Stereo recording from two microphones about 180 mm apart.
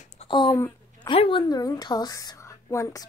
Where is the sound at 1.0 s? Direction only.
30° left (ahead or behind).